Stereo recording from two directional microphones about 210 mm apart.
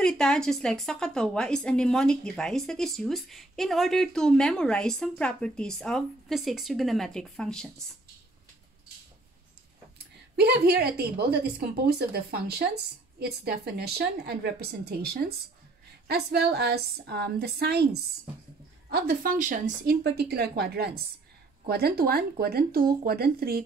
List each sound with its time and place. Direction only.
0.0 s a woman's voice: 5° left (ahead or behind)
10.3 s a woman's voice: 50° right (ahead or behind)